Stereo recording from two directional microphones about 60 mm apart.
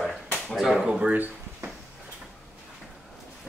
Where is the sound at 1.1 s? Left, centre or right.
Right.